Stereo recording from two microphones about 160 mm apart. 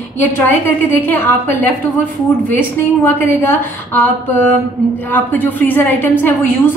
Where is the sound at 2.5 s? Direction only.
15° left (ahead or behind).